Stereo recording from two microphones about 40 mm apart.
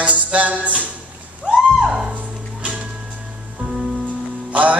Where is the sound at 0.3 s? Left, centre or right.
Right.